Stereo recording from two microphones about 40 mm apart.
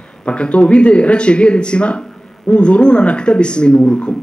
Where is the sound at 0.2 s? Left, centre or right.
Left.